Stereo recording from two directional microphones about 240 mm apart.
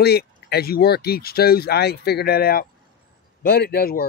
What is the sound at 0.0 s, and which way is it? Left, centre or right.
Speech, left.